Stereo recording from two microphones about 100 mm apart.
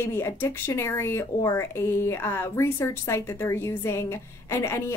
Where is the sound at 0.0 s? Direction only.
25° left (ahead or behind).